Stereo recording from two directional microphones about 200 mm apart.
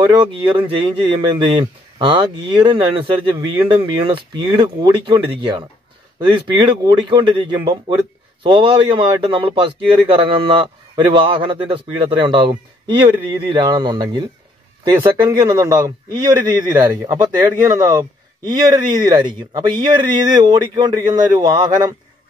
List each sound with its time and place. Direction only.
0.0 s a man's voice: 20° right (ahead or behind)